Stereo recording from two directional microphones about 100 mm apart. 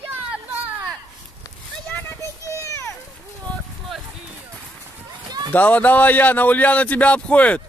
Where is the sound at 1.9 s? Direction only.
20° left (ahead or behind).